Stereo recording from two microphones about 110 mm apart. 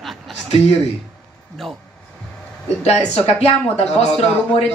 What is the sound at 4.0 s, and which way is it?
Speech, 65° left (ahead or behind).